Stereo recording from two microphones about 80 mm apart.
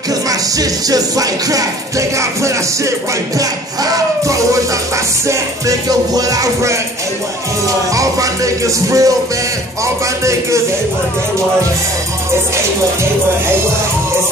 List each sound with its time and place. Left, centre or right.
0.3 s music: right